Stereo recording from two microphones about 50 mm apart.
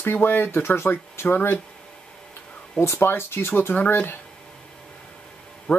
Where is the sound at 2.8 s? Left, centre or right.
Left.